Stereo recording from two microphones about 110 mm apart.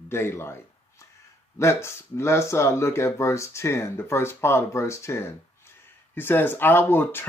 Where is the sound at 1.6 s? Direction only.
25° left (ahead or behind).